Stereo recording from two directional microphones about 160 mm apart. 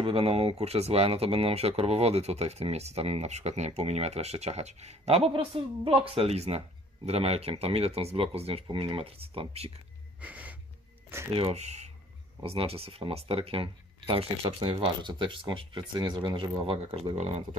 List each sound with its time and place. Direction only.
0.0 s speech: 35° right (ahead or behind)
10.2 s wheeze: 10° right (ahead or behind)
11.3 s speech: 40° right (ahead or behind)